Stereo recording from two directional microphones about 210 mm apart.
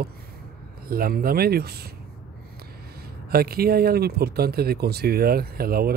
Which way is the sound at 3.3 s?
45° right (ahead or behind).